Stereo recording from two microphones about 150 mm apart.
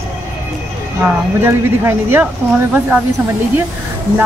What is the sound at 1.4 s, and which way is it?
Speech, 15° right (ahead or behind).